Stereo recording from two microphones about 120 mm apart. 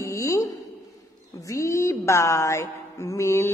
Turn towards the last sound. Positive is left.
turn(degrees=25)  # may be behind; listen again after turning